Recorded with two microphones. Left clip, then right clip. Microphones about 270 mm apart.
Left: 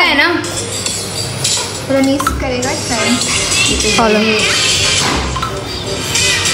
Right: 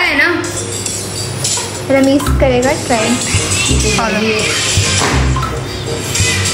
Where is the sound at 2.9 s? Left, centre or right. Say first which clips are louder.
Right 1 dB; centre.